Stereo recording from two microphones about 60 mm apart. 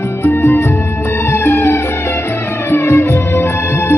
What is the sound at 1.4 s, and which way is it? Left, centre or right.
Music, left.